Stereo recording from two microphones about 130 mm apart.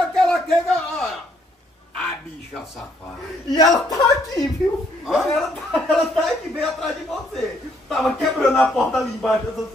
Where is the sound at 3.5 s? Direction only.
30° left (ahead or behind).